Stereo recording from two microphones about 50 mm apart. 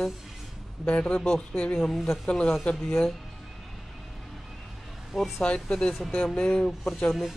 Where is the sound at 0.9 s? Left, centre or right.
Left.